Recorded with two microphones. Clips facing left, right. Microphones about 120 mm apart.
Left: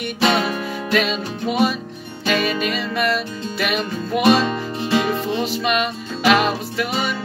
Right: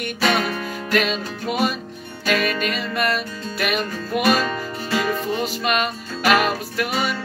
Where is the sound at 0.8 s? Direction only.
Centre (ahead or behind).